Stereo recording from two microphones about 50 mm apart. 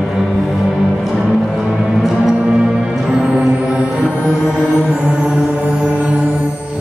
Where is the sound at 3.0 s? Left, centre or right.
Centre.